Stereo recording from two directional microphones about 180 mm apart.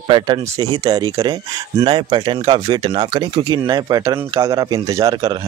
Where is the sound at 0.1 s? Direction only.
25° right (ahead or behind).